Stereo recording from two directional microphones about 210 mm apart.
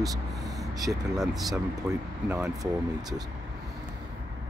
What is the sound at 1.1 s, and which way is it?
Speech, centre (ahead or behind).